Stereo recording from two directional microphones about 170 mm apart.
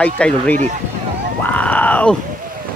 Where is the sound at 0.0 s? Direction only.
5° left (ahead or behind).